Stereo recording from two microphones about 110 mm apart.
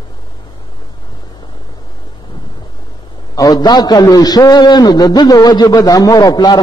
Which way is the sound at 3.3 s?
35° left (ahead or behind).